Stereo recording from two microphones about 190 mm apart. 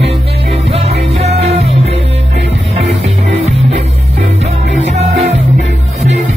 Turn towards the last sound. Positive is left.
turn(degrees=-35)  # may be behind; listen again after turning